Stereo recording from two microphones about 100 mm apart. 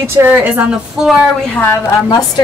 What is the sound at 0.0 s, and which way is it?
Speech, 20° right (ahead or behind).